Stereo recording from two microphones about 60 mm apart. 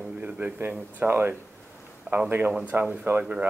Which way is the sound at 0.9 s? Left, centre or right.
Right.